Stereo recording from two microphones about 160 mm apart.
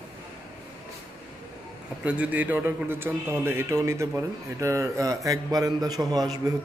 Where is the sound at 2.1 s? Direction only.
10° right (ahead or behind).